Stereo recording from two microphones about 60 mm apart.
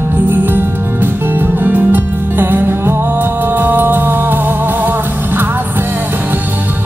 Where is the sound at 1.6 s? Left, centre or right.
Right.